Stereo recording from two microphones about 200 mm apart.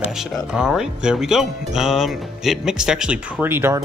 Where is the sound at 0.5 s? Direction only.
5° right (ahead or behind).